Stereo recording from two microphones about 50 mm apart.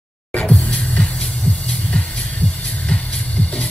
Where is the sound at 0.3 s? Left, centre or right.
Left.